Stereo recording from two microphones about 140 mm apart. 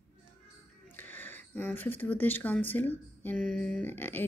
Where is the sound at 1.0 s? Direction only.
15° left (ahead or behind).